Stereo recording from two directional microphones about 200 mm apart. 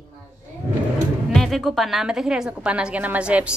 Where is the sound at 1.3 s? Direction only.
Centre (ahead or behind).